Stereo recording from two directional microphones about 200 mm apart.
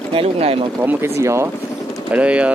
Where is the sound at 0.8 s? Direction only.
15° right (ahead or behind).